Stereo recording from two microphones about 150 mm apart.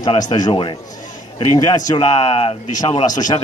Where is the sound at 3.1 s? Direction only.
25° left (ahead or behind).